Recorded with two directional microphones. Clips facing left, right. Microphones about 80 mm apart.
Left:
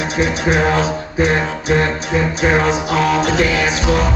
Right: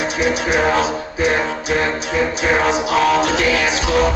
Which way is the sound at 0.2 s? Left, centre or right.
Left.